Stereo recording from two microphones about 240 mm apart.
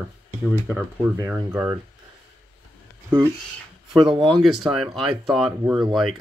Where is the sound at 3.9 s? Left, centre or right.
Centre.